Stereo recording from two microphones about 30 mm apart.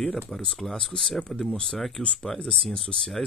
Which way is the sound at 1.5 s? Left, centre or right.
Left.